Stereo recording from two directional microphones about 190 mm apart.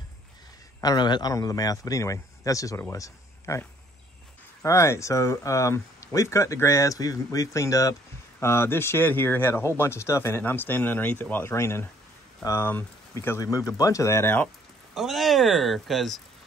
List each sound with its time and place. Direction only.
0.7 s speech: 20° left (ahead or behind)
4.6 s speech: 15° left (ahead or behind)
15.0 s speech: centre (ahead or behind)